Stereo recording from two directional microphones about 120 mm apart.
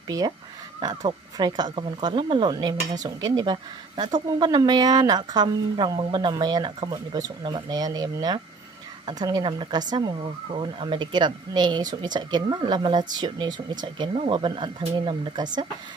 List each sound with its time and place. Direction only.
0.1 s speech: 25° right (ahead or behind)
0.7 s speech: 40° right (ahead or behind)
2.5 s speech: 30° right (ahead or behind)
14.1 s speech: 50° right (ahead or behind)